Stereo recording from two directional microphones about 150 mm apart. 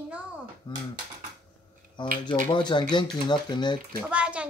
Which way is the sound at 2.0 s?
30° left (ahead or behind).